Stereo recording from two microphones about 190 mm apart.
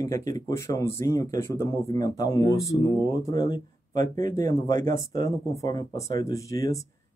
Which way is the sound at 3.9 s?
40° right (ahead or behind).